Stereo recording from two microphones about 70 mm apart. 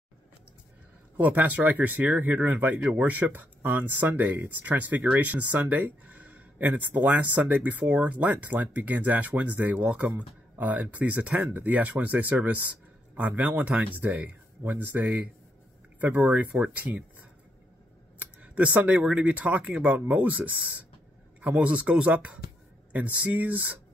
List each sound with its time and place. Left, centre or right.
1.1 s speech: right
18.2 s speech: centre